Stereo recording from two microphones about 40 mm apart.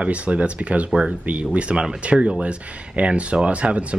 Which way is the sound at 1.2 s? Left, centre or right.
Right.